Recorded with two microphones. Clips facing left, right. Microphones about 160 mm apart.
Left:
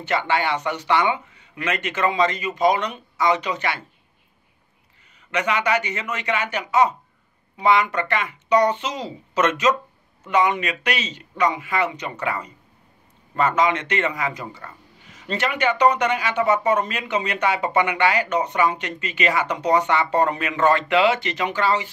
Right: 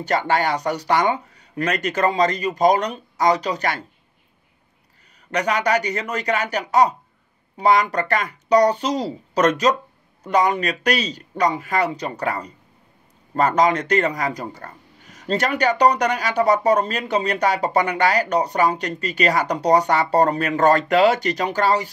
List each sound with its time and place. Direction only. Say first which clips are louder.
0.0 s speech: right 2 dB; 40° right (ahead or behind)
5.3 s speech: right 2 dB; 40° right (ahead or behind)